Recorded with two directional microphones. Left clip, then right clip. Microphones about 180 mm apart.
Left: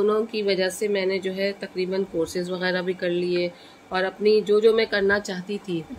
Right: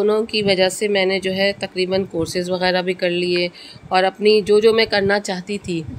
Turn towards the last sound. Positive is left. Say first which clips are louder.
# right 4 dB
turn(degrees=-45)  # may be behind; listen again after turning